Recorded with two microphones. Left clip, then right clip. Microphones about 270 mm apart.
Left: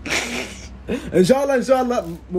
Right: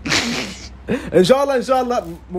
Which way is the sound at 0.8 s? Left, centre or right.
Right.